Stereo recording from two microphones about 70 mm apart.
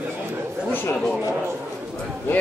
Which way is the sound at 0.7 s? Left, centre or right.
Left.